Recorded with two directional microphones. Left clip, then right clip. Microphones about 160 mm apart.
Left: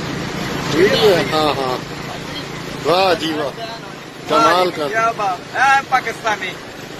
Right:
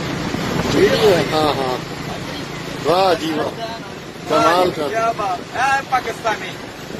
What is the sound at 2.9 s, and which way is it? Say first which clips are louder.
Speech: left 1 dB; 15° right (ahead or behind).